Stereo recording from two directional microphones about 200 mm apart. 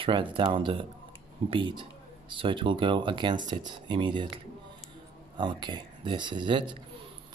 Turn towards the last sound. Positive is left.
turn(degrees=-25)  # may be behind; listen again after turning